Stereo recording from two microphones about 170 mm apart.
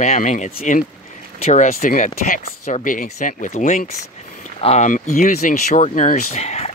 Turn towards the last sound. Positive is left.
turn(degrees=40)  # may be behind; listen again after turning